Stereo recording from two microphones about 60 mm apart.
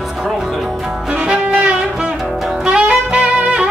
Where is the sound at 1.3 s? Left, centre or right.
Centre.